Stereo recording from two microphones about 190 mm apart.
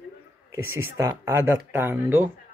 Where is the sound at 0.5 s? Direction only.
10° right (ahead or behind).